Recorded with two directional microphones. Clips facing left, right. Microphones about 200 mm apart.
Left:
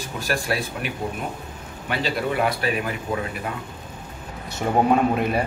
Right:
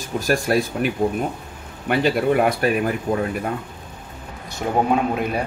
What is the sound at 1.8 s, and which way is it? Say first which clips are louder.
Speech: right 7 dB; 50° right (ahead or behind).